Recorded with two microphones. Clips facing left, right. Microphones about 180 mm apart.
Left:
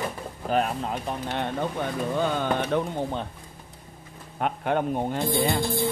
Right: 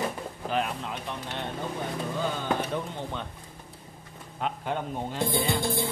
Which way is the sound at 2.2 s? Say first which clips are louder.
Left 4 dB; 65° left (ahead or behind).